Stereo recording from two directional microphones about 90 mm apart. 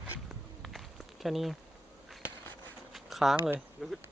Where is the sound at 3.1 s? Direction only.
Centre (ahead or behind).